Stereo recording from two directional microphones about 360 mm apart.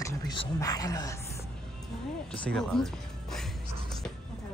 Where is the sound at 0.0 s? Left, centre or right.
Centre.